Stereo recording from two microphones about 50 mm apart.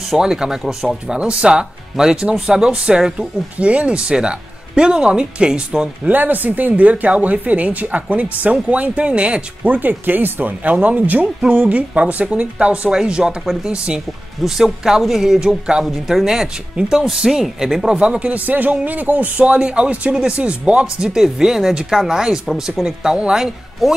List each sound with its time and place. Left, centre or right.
0.2 s speech: centre
1.1 s speech: right
3.5 s speech: right
6.0 s speech: right
9.7 s speech: right; by 14.0 s centre
14.4 s speech: centre
15.8 s speech: centre
16.3 s speech: centre
21.1 s speech: centre